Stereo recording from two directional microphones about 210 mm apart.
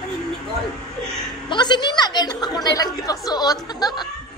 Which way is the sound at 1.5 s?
20° left (ahead or behind).